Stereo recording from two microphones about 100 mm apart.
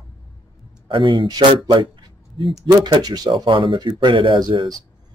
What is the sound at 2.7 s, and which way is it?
Speech, 50° right (ahead or behind).